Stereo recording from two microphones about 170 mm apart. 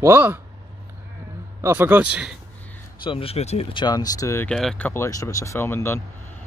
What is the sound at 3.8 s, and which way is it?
Speech, 20° left (ahead or behind).